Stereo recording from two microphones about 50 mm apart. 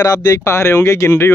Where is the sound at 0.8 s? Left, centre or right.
Left.